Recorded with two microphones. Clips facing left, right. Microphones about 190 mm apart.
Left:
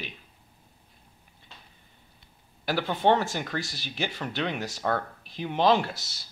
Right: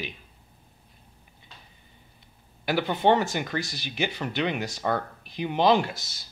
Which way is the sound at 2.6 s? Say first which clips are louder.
Right 1 dB; centre (ahead or behind).